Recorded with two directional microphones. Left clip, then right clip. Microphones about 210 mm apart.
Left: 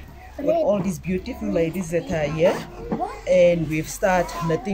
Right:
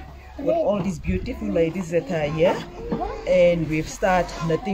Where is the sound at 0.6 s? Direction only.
Centre (ahead or behind).